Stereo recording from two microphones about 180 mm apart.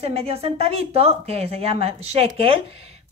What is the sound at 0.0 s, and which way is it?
Speech, 35° right (ahead or behind).